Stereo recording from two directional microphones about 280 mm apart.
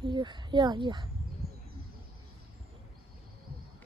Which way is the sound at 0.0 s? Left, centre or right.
Centre.